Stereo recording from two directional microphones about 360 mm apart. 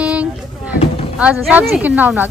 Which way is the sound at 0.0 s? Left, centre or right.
Centre.